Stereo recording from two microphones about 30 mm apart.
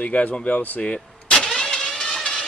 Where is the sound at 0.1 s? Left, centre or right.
Left.